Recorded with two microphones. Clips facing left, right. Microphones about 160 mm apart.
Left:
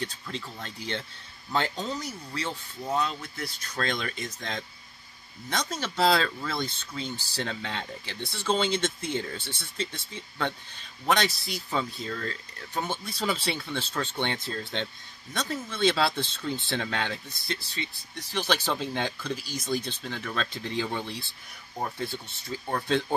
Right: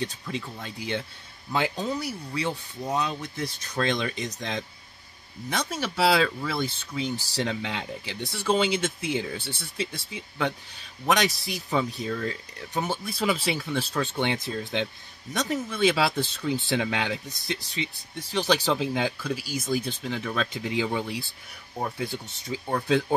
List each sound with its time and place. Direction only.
0.0 s speech: 15° right (ahead or behind)